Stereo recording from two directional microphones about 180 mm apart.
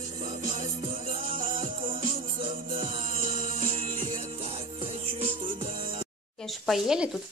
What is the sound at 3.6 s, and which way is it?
Music, 30° right (ahead or behind).